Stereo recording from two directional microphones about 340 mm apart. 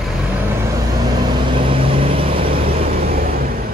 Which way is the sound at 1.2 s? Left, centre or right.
Centre.